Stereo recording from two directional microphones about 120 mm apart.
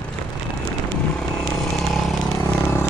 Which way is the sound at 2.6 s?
20° left (ahead or behind).